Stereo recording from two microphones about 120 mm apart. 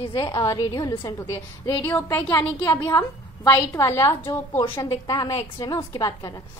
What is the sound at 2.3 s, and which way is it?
A woman's voice, 25° left (ahead or behind).